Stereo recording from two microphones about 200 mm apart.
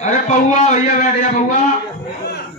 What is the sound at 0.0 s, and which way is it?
A man's voice, 35° left (ahead or behind).